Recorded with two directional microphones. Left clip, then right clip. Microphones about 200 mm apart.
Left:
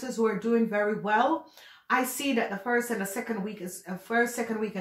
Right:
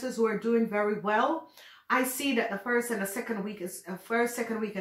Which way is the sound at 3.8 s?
30° left (ahead or behind).